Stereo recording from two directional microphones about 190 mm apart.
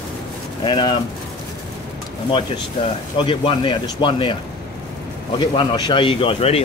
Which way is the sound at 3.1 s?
25° left (ahead or behind).